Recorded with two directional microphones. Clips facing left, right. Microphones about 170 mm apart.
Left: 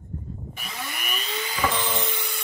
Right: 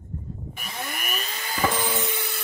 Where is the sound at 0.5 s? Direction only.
50° right (ahead or behind).